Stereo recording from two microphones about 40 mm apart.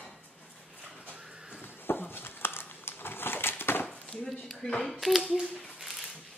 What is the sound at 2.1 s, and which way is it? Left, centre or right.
Crumpling, left.